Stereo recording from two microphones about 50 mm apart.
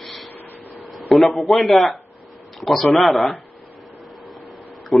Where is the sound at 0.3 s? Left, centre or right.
Left.